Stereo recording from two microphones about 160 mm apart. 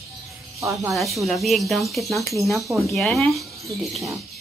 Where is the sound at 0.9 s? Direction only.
Centre (ahead or behind).